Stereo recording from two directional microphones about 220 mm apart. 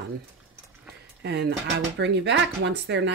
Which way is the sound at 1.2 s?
50° right (ahead or behind).